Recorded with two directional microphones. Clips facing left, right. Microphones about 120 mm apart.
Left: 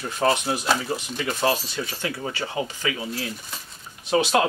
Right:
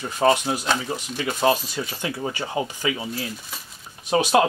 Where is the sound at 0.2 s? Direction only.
15° right (ahead or behind).